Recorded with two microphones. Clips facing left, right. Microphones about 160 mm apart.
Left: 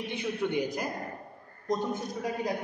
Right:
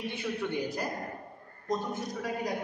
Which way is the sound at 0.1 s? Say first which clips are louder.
Left 6 dB; 20° left (ahead or behind).